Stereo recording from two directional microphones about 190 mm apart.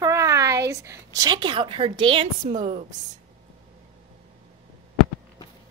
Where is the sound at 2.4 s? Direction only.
40° right (ahead or behind).